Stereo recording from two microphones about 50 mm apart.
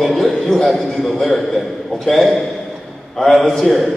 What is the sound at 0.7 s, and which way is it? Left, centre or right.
Mantra, centre.